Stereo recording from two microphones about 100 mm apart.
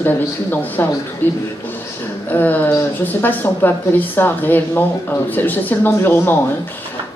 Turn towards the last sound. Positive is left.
turn(degrees=20)  # may be behind; listen again after turning